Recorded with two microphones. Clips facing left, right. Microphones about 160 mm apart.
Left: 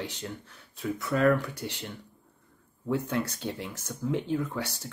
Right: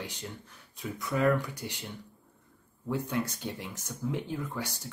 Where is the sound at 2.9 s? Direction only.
15° right (ahead or behind).